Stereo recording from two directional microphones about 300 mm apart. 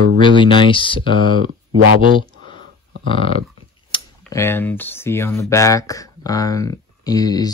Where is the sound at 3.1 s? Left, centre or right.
Centre.